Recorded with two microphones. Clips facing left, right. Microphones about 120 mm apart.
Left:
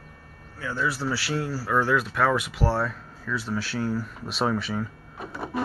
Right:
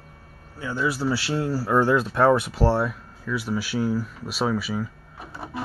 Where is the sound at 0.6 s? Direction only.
20° right (ahead or behind); by 2.7 s 35° right (ahead or behind).